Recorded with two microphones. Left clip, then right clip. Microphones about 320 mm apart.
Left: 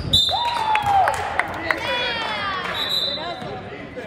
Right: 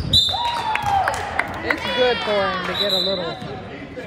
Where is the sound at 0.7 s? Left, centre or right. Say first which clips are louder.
Left 3 dB; left.